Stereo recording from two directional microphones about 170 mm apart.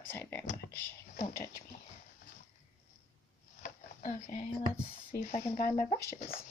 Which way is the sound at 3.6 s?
50° left (ahead or behind).